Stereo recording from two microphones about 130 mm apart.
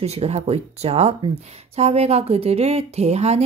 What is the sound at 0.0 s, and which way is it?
Speech, 55° right (ahead or behind).